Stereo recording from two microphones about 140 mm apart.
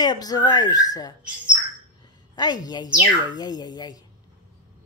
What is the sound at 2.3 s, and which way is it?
A woman's voice, 30° left (ahead or behind).